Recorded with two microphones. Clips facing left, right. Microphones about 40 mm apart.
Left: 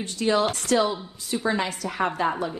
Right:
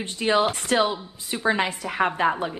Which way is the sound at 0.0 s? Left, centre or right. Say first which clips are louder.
Right 1 dB; right.